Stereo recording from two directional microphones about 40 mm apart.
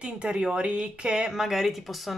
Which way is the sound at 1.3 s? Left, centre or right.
Centre.